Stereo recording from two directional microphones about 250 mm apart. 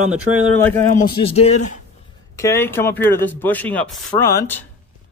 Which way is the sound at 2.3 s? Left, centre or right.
Centre.